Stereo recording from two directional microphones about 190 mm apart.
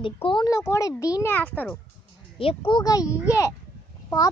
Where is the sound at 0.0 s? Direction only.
25° left (ahead or behind); by 1.8 s 10° left (ahead or behind).